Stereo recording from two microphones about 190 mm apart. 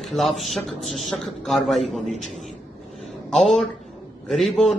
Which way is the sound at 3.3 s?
5° left (ahead or behind).